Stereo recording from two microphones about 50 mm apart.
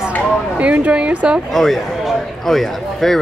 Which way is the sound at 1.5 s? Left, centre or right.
Centre.